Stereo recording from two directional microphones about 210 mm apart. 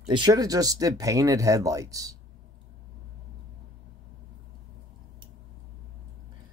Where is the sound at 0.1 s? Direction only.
20° right (ahead or behind).